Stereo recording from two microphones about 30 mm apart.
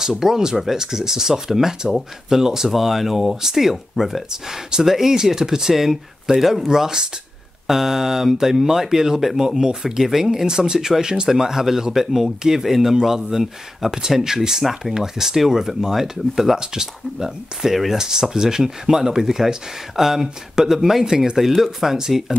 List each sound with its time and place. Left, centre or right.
0.2 s speech: centre
2.8 s speech: centre
4.3 s speech: centre
6.7 s speech: right
14.6 s speech: centre
16.5 s speech: right